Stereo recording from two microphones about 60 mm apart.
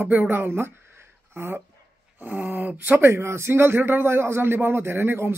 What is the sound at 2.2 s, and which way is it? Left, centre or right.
Speech, right.